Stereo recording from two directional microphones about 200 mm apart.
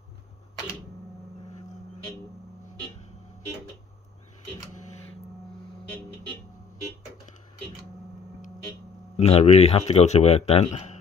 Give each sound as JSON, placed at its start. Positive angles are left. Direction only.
{"t": 9.1, "sound": "speech", "side_deg": 30}